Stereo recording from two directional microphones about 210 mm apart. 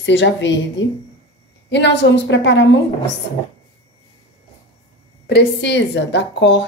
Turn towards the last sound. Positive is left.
turn(degrees=55)  # may be behind; listen again after turning